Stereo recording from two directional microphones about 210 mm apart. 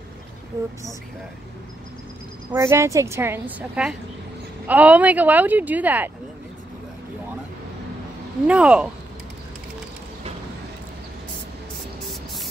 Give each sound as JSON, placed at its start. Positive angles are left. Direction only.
{"t": 0.5, "sound": "speech", "side_deg": -15}
{"t": 2.5, "sound": "speech", "side_deg": -15}
{"t": 8.5, "sound": "speech", "side_deg": -5}